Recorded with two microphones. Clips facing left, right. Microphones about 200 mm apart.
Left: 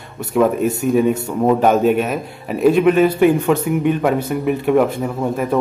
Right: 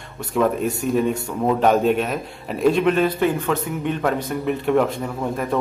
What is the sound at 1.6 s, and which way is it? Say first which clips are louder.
A man's voice: left 3 dB; 5° left (ahead or behind).